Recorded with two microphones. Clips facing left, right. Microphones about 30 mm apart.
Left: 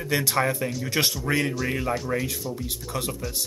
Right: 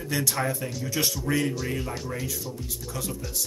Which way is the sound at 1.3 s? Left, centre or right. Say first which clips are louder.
Left 2 dB; left.